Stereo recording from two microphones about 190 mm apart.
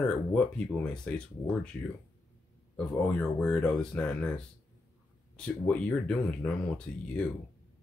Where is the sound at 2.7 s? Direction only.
10° left (ahead or behind).